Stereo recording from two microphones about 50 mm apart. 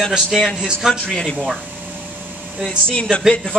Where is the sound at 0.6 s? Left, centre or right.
Centre.